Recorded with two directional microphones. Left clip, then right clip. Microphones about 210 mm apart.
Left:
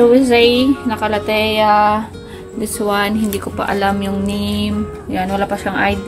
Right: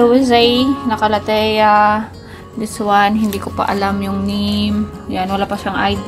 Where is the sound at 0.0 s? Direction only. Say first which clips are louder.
Left 1 dB; 15° right (ahead or behind).